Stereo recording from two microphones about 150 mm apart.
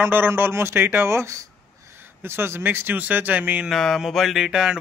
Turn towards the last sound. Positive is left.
turn(degrees=-5)  # may be behind; listen again after turning